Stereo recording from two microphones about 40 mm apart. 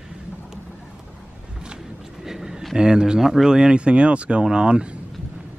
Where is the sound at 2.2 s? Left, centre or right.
Centre.